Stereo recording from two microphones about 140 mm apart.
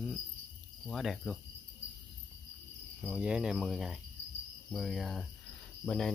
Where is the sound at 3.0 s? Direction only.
5° right (ahead or behind).